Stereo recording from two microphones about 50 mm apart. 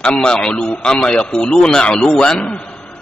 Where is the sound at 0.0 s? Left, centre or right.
Centre.